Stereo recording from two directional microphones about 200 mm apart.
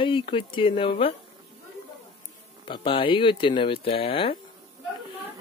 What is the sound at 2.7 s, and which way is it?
Speech, 25° left (ahead or behind).